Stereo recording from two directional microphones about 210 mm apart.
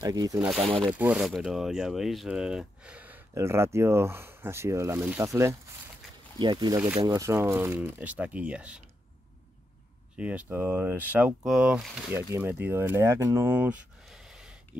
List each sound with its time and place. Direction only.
0.0 s speech: 20° right (ahead or behind)
0.4 s speech: 5° right (ahead or behind)
6.8 s speech: 10° right (ahead or behind)
10.1 s speech: 5° right (ahead or behind)